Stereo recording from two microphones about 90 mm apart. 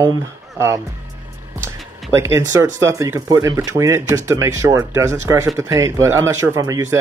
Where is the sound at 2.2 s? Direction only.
30° right (ahead or behind).